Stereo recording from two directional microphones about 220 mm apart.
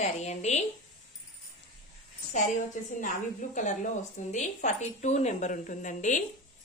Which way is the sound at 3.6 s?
35° left (ahead or behind).